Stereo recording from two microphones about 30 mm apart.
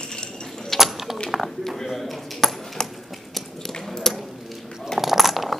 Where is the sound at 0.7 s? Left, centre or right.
Centre.